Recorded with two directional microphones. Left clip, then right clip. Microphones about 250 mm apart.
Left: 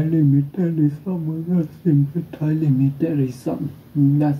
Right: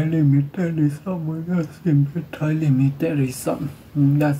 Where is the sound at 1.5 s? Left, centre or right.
Centre.